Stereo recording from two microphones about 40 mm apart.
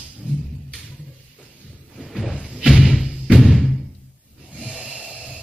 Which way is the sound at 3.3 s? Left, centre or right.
Centre.